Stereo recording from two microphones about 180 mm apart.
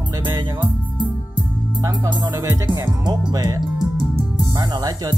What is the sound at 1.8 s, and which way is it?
Speech, 20° right (ahead or behind).